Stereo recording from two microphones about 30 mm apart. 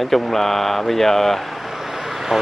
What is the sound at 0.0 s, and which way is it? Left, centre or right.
Speech, centre.